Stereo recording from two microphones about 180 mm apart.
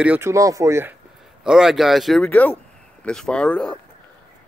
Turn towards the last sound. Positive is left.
turn(degrees=5)  # may be behind; listen again after turning